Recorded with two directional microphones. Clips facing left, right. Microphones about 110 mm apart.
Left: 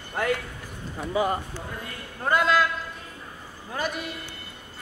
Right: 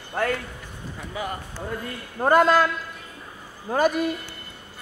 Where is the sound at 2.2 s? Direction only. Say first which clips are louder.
Right 5 dB; 45° right (ahead or behind).